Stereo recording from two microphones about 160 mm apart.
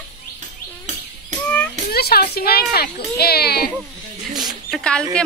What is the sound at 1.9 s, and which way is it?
A woman's voice, 75° left (ahead or behind).